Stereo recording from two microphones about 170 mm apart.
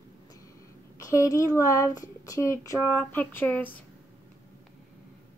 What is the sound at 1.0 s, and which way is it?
Speech, 20° left (ahead or behind).